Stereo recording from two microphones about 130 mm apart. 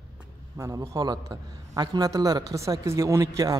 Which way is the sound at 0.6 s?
25° right (ahead or behind).